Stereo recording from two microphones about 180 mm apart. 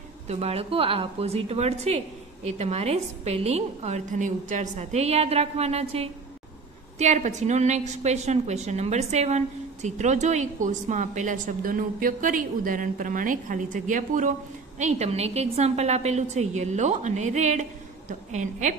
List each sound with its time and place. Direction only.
0.3 s a woman's voice: 35° right (ahead or behind)